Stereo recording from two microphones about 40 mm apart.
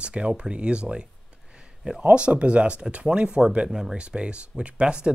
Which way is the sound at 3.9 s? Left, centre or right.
Right.